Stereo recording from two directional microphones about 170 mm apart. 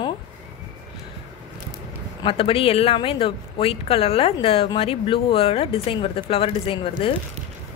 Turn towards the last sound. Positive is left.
turn(degrees=30)  # may be behind; listen again after turning